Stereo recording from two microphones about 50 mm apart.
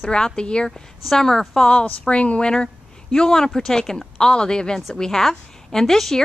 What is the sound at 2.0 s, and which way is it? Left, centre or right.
A woman's voice, left.